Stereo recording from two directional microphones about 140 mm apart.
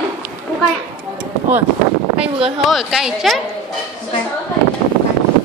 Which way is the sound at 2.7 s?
Centre (ahead or behind).